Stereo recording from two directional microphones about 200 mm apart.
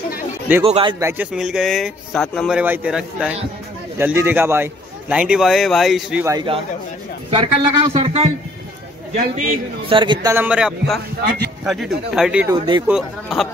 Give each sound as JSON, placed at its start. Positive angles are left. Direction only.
{"t": 0.7, "sound": "a man's voice", "side_deg": -25}
{"t": 0.9, "sound": "a man's voice", "side_deg": -10}
{"t": 6.2, "sound": "a man's voice", "side_deg": -20}
{"t": 10.2, "sound": "a man's voice", "side_deg": -10}
{"t": 12.5, "sound": "a man's voice", "side_deg": -25}
{"t": 12.8, "sound": "speech", "side_deg": 0}